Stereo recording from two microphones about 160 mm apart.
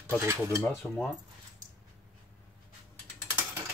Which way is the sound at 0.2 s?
15° right (ahead or behind).